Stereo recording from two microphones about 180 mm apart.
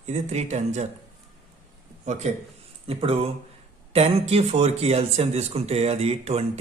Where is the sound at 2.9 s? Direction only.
30° right (ahead or behind).